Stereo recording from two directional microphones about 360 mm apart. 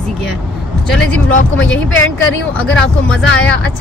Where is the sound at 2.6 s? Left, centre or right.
Centre.